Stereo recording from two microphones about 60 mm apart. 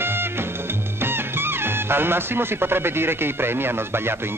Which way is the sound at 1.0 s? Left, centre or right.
Right.